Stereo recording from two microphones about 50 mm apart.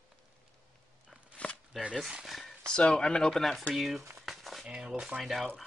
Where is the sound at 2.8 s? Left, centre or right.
Centre.